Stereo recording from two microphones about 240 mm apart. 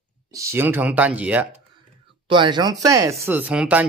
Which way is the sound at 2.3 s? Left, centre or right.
Centre.